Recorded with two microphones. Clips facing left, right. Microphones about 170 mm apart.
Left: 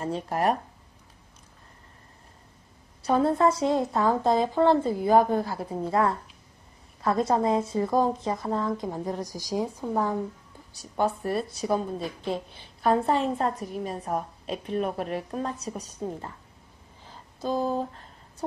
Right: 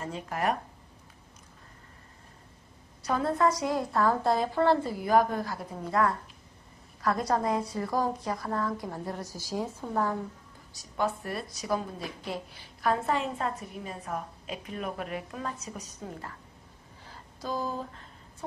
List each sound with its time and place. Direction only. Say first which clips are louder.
0.0 s a woman's voice: left 5 dB; 35° left (ahead or behind)
3.1 s a woman's voice: left 4 dB; 30° left (ahead or behind)
11.0 s a woman's voice: left 5 dB; 30° left (ahead or behind)